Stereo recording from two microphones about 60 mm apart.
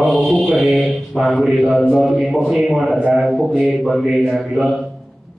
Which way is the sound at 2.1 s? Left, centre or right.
Centre.